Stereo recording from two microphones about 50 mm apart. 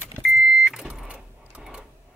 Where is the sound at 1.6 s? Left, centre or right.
Centre.